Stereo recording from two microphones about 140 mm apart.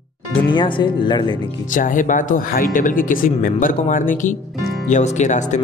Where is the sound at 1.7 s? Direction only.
70° left (ahead or behind).